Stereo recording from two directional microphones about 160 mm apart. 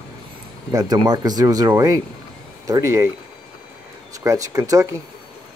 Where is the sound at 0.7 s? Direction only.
25° right (ahead or behind).